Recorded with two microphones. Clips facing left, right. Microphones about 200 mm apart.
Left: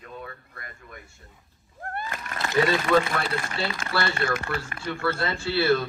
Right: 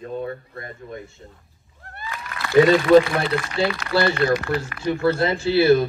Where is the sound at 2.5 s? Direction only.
20° right (ahead or behind).